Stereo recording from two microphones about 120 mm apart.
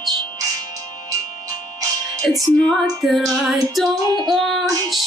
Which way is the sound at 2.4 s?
Centre (ahead or behind).